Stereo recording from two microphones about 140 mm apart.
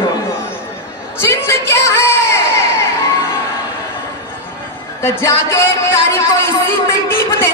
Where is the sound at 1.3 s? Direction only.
20° left (ahead or behind).